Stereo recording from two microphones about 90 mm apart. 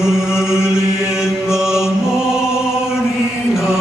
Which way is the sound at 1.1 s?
5° right (ahead or behind).